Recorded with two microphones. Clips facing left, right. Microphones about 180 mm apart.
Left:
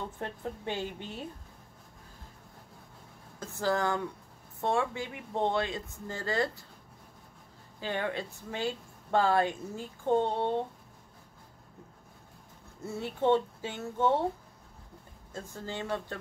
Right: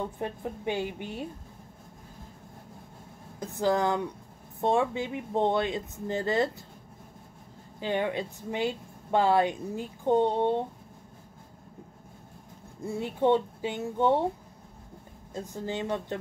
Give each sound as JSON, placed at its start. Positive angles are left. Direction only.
{"t": 0.2, "sound": "speech", "side_deg": -15}
{"t": 3.3, "sound": "speech", "side_deg": -15}
{"t": 7.8, "sound": "speech", "side_deg": -20}
{"t": 12.8, "sound": "speech", "side_deg": -15}
{"t": 15.3, "sound": "speech", "side_deg": -20}